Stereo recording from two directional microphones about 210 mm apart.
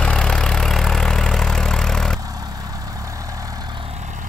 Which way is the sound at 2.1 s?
15° right (ahead or behind).